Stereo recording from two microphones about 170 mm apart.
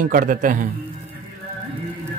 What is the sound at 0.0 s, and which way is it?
Speech, 50° right (ahead or behind).